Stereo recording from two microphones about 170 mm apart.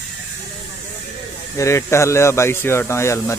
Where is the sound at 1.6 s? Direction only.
15° left (ahead or behind).